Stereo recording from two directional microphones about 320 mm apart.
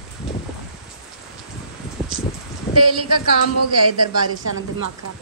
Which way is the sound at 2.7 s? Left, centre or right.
Right.